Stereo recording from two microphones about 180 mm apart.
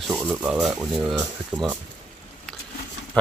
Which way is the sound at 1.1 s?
25° right (ahead or behind).